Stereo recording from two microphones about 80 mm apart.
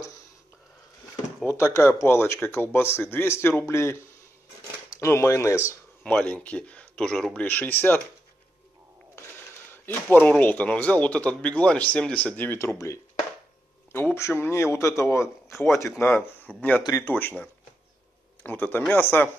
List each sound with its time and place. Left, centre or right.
1.4 s speech: left
6.0 s speech: centre
7.3 s speech: left
10.0 s speech: left
12.5 s speech: left
14.1 s speech: left
18.4 s speech: left